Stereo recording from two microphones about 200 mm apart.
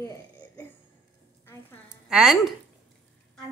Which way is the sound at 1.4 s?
15° left (ahead or behind).